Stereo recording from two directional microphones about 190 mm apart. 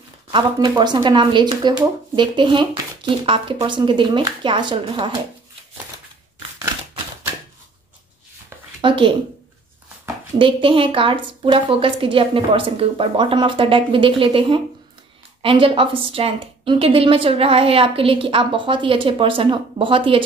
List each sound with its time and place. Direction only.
0.3 s speech: 25° right (ahead or behind)
8.8 s speech: 25° right (ahead or behind)
10.4 s speech: 25° right (ahead or behind)